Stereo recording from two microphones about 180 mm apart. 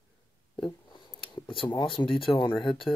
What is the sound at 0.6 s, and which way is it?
Speech, 25° left (ahead or behind).